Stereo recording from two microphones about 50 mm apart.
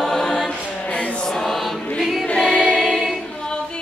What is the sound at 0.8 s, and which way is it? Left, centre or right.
Music, left.